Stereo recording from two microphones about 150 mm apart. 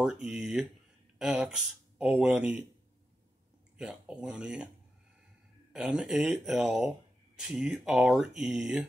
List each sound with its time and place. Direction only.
0.0 s speech: 5° right (ahead or behind)
3.7 s speech: 5° right (ahead or behind)
5.7 s speech: 5° right (ahead or behind)